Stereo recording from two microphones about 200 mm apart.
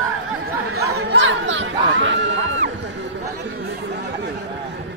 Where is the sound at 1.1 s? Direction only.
65° right (ahead or behind).